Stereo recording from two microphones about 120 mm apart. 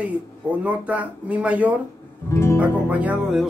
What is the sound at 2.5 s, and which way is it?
Music, 15° right (ahead or behind).